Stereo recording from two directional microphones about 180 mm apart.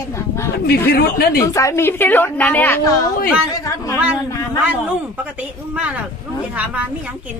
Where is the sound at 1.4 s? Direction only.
15° left (ahead or behind).